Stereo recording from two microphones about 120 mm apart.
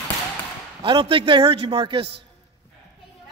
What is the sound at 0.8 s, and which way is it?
Speech, 45° right (ahead or behind).